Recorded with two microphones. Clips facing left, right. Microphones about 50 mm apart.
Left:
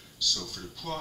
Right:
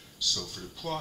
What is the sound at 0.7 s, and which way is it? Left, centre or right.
Speech, centre.